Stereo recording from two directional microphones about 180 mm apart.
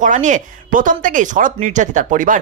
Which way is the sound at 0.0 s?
45° right (ahead or behind).